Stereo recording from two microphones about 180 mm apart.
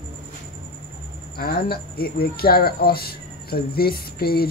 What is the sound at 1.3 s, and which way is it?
Speech, 55° left (ahead or behind).